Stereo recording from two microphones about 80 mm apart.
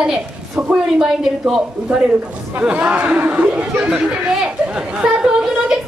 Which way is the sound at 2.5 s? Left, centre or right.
Centre.